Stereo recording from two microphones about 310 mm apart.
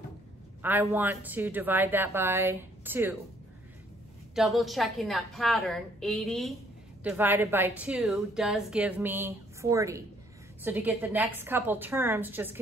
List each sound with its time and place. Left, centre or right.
0.6 s a woman's voice: centre
4.4 s a woman's voice: centre